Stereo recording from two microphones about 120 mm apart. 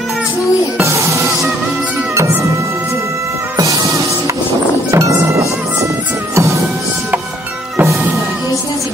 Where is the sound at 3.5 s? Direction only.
25° right (ahead or behind).